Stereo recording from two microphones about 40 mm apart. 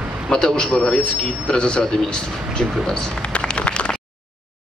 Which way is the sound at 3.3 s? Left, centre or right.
Left.